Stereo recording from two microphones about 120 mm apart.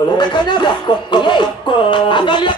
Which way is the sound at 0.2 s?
40° left (ahead or behind).